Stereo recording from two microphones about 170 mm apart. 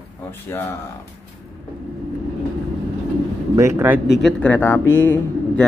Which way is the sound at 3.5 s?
15° right (ahead or behind).